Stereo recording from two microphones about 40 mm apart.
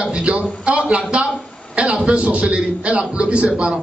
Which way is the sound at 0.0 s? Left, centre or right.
Right.